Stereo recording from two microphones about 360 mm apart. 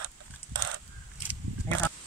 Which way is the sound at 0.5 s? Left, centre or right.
Right.